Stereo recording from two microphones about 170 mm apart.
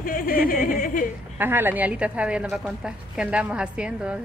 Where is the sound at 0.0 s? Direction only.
55° left (ahead or behind).